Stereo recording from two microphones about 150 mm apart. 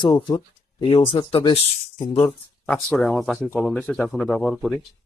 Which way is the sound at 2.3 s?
10° left (ahead or behind).